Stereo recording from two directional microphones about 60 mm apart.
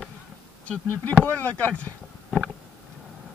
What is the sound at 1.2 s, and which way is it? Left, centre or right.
Speech, left.